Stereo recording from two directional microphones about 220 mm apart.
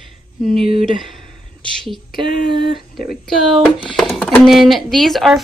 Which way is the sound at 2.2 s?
20° right (ahead or behind).